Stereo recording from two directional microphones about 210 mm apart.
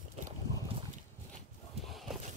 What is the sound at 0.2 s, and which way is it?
Boat, 30° right (ahead or behind).